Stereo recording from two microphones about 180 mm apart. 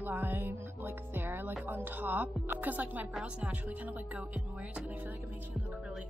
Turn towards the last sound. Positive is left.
turn(degrees=-5)  # may be behind; listen again after turning